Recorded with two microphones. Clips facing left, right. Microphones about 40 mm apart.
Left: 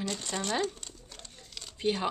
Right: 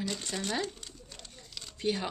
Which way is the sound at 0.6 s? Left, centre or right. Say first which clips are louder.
Left 3 dB; left.